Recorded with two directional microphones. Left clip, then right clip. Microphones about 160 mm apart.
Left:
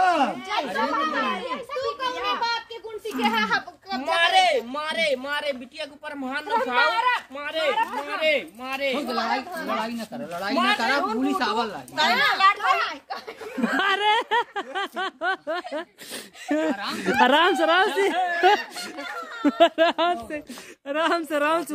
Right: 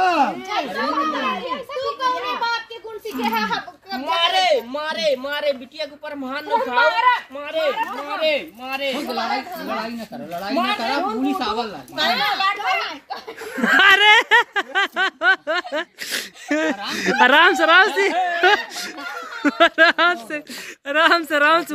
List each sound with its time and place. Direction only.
0.0 s a sound: 10° left (ahead or behind)
0.8 s a child's voice: 10° left (ahead or behind)
1.4 s children playing: 10° left (ahead or behind)
3.2 s speech: 5° left (ahead or behind)